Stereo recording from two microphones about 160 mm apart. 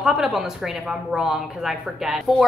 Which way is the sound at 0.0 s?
Centre (ahead or behind).